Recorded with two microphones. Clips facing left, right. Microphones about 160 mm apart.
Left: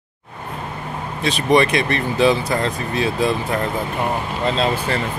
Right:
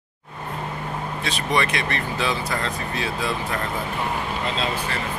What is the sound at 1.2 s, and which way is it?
Speech, 20° left (ahead or behind).